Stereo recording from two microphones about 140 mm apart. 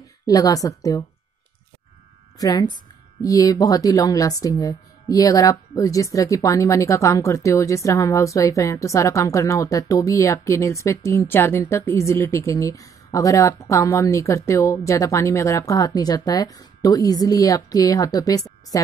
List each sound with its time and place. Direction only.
0.3 s speech: 25° left (ahead or behind)
2.3 s speech: 25° left (ahead or behind)